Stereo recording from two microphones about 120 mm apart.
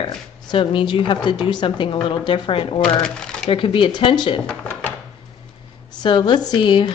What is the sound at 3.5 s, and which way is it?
Speech, 45° left (ahead or behind).